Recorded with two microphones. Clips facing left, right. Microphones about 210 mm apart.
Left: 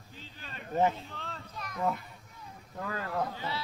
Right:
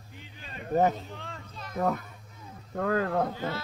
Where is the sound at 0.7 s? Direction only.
40° right (ahead or behind).